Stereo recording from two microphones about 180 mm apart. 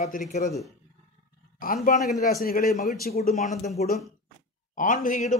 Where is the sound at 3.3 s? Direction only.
40° left (ahead or behind).